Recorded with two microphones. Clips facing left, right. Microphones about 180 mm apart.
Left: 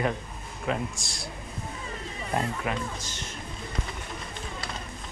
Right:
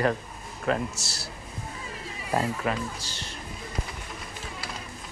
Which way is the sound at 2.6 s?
35° right (ahead or behind).